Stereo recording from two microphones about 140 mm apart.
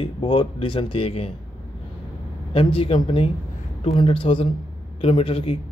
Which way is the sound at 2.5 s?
40° left (ahead or behind).